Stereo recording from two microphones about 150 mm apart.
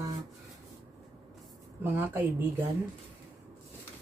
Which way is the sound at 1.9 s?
15° right (ahead or behind).